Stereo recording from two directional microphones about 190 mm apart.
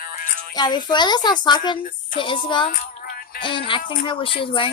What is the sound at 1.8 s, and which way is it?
Speech, 45° left (ahead or behind).